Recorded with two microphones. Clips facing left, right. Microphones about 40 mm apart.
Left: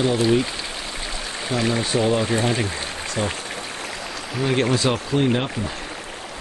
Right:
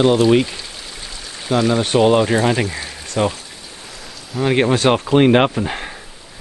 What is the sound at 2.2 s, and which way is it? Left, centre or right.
Speech, right.